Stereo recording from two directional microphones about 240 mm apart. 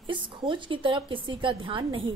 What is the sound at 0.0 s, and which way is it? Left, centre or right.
A woman's voice, centre.